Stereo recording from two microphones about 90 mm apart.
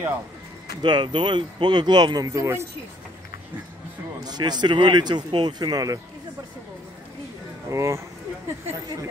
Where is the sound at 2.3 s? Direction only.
35° right (ahead or behind).